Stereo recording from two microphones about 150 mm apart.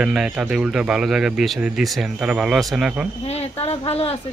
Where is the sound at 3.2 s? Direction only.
45° left (ahead or behind).